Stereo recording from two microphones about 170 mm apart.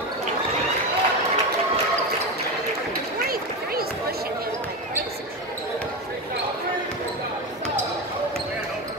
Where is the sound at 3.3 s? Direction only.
60° right (ahead or behind).